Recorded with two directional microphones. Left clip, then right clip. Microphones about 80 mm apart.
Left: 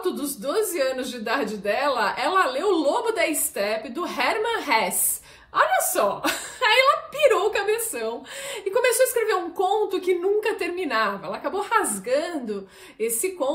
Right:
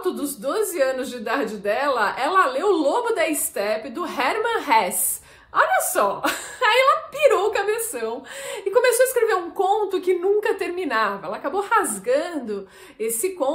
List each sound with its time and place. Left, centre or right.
0.4 s speech: right